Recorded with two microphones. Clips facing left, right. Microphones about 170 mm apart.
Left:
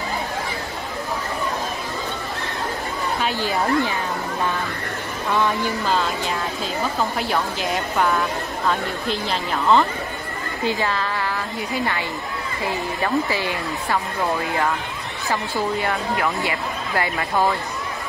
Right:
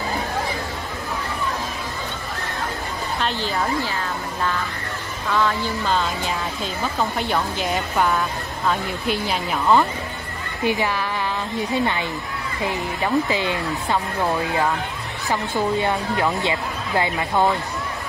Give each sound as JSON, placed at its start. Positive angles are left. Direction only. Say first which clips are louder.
{"t": 3.2, "sound": "speech", "louder": "even", "side_deg": 10}
{"t": 7.2, "sound": "a woman's voice", "louder": "even", "side_deg": 0}
{"t": 15.2, "sound": "speech", "louder": "right 1 dB", "side_deg": -20}